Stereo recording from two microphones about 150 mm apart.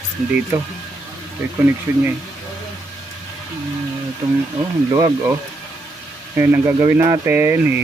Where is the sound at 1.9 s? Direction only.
15° right (ahead or behind).